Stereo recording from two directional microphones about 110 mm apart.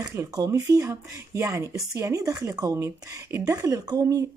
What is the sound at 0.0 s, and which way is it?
Speech, 30° right (ahead or behind).